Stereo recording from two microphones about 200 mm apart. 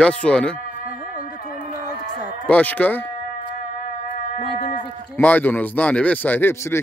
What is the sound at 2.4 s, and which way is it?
Speech, 10° left (ahead or behind).